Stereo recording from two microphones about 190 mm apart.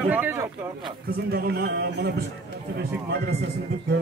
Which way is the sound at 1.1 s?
55° right (ahead or behind).